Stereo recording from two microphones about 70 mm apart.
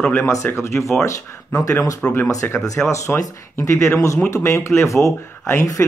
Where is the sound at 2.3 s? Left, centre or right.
Left.